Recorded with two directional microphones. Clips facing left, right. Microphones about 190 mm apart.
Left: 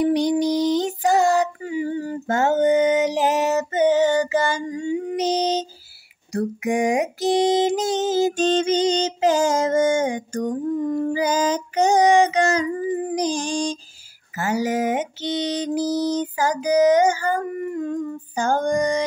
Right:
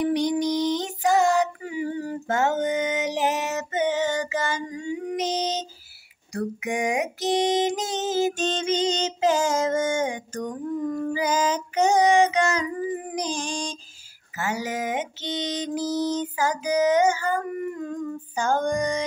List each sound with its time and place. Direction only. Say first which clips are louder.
0.0 s female singing: left 4 dB; 35° left (ahead or behind)
6.3 s a sound: left 5 dB; 35° left (ahead or behind)
13.1 s music: left 6 dB; 35° left (ahead or behind)
14.3 s mantra: left 6 dB; 35° left (ahead or behind)